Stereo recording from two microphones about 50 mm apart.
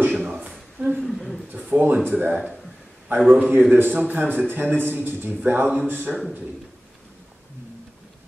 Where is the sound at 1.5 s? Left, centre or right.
Right.